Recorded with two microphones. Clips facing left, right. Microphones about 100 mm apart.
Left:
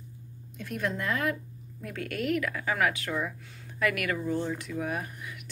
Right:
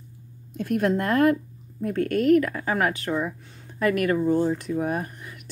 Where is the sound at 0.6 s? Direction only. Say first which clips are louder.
Right 9 dB; 55° right (ahead or behind).